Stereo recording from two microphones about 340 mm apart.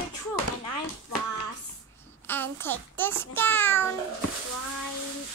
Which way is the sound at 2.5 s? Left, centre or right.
Centre.